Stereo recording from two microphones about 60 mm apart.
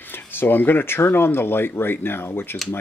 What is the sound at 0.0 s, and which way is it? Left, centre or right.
Speech, left.